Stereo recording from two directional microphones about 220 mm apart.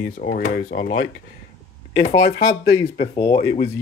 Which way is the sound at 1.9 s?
15° left (ahead or behind).